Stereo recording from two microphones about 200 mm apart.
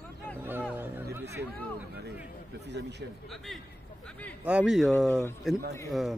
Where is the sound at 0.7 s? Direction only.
10° right (ahead or behind).